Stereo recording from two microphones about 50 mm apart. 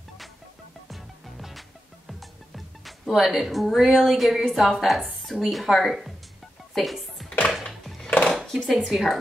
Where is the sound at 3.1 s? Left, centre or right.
Centre.